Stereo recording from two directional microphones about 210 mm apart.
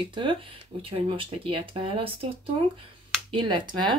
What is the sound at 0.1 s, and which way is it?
Speech, 25° right (ahead or behind).